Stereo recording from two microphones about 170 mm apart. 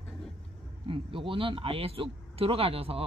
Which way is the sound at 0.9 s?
30° right (ahead or behind).